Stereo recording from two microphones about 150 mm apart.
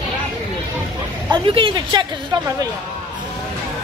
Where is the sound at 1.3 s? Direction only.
35° right (ahead or behind).